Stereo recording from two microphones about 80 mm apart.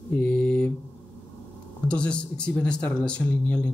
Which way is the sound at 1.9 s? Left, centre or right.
Centre.